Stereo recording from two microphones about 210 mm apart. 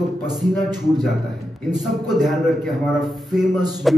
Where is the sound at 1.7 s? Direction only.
Centre (ahead or behind).